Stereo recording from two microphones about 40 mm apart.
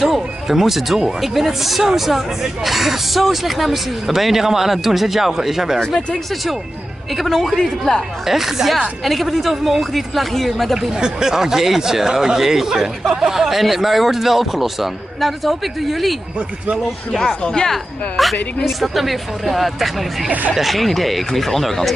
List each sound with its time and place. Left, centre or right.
0.0 s speech: centre
5.9 s speech: centre
7.2 s speech: centre
8.3 s speech: centre
11.0 s speech: centre
20.2 s speech: right
20.5 s speech: centre